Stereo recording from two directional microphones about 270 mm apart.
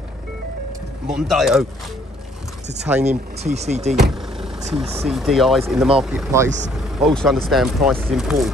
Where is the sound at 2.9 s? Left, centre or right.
Centre.